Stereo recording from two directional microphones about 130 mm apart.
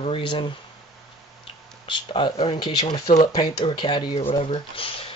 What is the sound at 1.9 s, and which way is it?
Speech, 40° left (ahead or behind).